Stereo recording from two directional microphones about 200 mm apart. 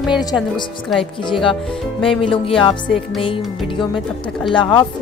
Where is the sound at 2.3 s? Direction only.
25° left (ahead or behind).